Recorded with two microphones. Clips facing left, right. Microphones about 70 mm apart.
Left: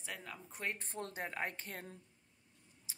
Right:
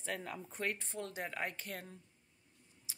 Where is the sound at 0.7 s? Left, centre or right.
Left.